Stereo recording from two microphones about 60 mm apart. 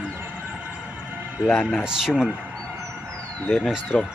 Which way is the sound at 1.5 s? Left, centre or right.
Left.